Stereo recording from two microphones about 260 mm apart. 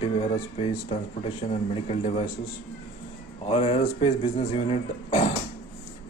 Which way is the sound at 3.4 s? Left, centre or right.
Left.